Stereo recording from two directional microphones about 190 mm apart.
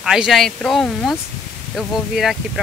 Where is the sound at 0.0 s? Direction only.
Centre (ahead or behind).